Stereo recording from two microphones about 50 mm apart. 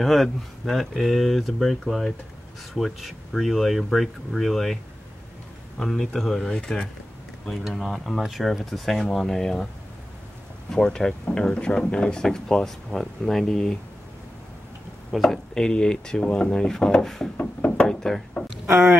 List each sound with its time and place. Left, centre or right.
0.0 s speech: centre
5.8 s speech: centre
7.6 s speech: centre
10.7 s speech: centre
15.1 s speech: centre
17.7 s a sound: centre
18.7 s speech: centre